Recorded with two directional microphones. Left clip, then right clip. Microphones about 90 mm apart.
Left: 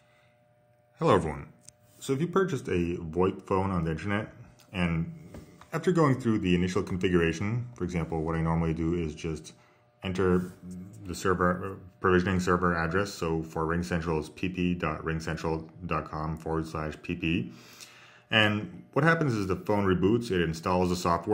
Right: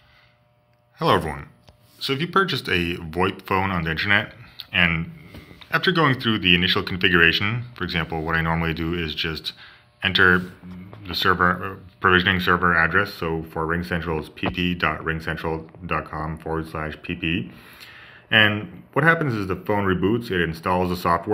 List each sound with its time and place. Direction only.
0.9 s speech: 15° left (ahead or behind)
2.0 s speech: 40° left (ahead or behind)
2.5 s a man's voice: 20° left (ahead or behind)
5.7 s a man's voice: 30° left (ahead or behind)
8.0 s speech: 10° left (ahead or behind)
11.2 s speech: 15° right (ahead or behind)
12.5 s a man's voice: 20° left (ahead or behind)
14.5 s speech: 15° left (ahead or behind)
15.1 s a man's voice: 25° left (ahead or behind)